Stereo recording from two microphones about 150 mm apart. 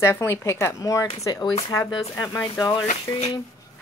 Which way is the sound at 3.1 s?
20° left (ahead or behind).